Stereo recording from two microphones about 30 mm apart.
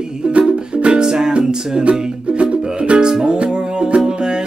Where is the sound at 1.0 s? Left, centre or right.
Centre.